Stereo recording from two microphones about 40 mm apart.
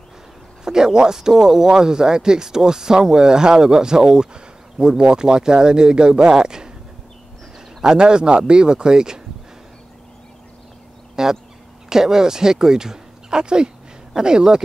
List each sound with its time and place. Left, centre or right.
0.7 s speech: centre
7.8 s speech: centre
11.2 s fowl: centre
11.9 s speech: centre